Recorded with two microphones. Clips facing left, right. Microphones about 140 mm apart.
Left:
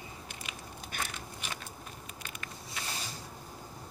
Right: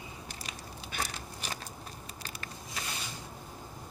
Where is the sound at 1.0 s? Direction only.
35° right (ahead or behind).